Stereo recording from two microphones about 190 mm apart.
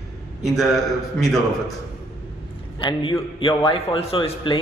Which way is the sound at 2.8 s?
25° left (ahead or behind).